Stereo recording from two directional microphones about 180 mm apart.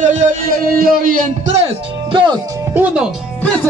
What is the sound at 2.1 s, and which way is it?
Speech, 25° right (ahead or behind).